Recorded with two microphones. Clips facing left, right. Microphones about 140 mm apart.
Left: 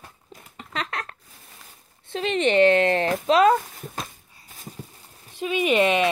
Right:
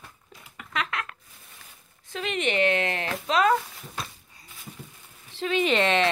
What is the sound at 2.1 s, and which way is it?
Speech, 35° left (ahead or behind).